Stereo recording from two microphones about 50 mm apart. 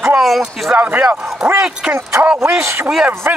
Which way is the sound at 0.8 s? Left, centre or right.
Right.